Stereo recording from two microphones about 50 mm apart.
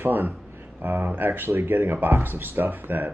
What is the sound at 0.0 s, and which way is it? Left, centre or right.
Speech, right.